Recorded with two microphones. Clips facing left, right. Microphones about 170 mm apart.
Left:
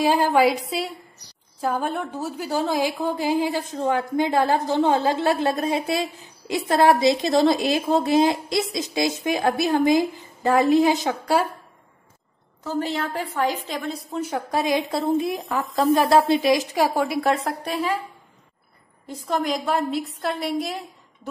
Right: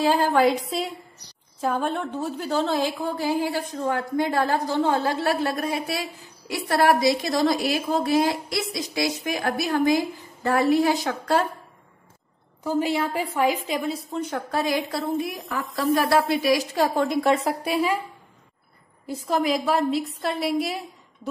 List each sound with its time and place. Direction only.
0.0 s a woman's voice: 15° left (ahead or behind)
12.6 s a woman's voice: 10° right (ahead or behind)
19.0 s a woman's voice: 5° right (ahead or behind)